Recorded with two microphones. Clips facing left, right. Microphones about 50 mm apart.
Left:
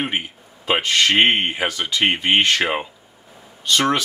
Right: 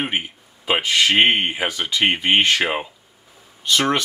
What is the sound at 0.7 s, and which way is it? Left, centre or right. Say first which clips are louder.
Speech: even; centre.